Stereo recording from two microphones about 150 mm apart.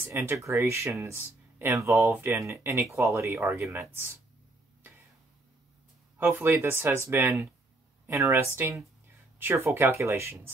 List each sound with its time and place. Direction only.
0.1 s speech: 15° right (ahead or behind)
6.1 s speech: 15° right (ahead or behind)